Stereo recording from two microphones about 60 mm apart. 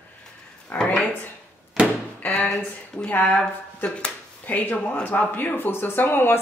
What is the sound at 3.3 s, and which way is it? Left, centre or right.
Speech, centre.